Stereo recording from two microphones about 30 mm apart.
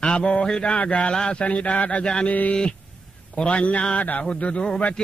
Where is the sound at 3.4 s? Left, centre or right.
Left.